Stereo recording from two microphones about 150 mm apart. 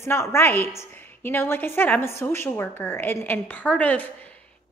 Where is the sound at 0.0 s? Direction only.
20° left (ahead or behind).